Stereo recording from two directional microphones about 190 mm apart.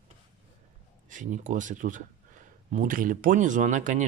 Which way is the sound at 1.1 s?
40° right (ahead or behind).